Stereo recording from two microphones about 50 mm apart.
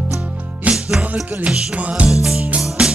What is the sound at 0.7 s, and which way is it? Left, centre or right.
Music, right.